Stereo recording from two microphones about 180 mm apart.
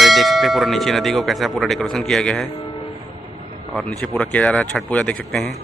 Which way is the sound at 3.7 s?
5° left (ahead or behind).